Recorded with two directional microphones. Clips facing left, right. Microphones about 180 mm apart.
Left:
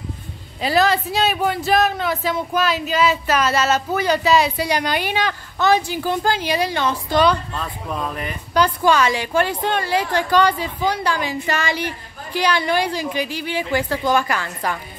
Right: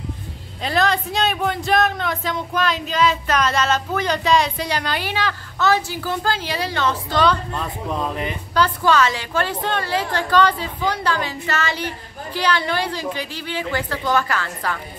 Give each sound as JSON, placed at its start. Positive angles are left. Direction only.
{"t": 0.6, "sound": "speech", "side_deg": 5}
{"t": 7.5, "sound": "speech", "side_deg": -20}
{"t": 8.5, "sound": "speech", "side_deg": 15}